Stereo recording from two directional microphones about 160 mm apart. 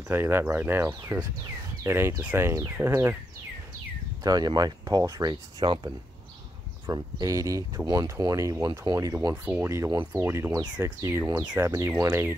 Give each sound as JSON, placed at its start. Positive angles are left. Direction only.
{"t": 0.1, "sound": "speech", "side_deg": -15}
{"t": 4.2, "sound": "speech", "side_deg": -25}